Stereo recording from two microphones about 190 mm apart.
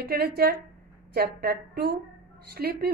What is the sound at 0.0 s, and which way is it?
A woman's voice, 55° right (ahead or behind).